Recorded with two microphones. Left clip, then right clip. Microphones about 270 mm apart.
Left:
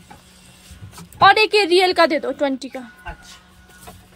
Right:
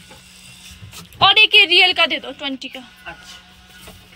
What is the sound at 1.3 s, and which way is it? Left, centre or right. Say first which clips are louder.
A woman's voice: right 3 dB; left.